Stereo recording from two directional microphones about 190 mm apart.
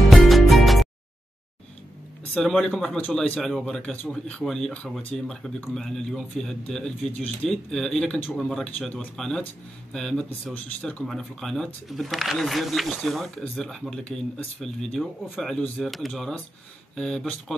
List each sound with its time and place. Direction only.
0.3 s music: centre (ahead or behind)
2.3 s speech: 5° left (ahead or behind)